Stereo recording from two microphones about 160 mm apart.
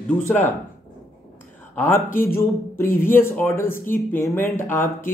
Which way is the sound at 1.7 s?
15° left (ahead or behind).